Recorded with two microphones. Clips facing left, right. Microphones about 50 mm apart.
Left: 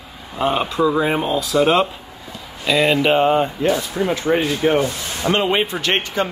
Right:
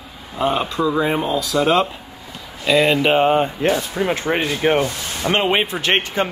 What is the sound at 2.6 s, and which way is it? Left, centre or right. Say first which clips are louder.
Speech: right 1 dB; centre.